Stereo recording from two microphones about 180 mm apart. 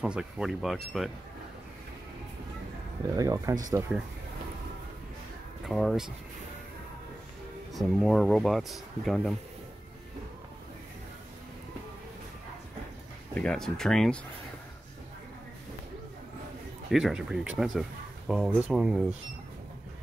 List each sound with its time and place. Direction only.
0.0 s speech: 5° right (ahead or behind)
3.2 s speech: 20° right (ahead or behind)
5.7 s speech: centre (ahead or behind)
7.7 s speech: centre (ahead or behind)
13.3 s speech: 5° left (ahead or behind)
16.9 s speech: centre (ahead or behind)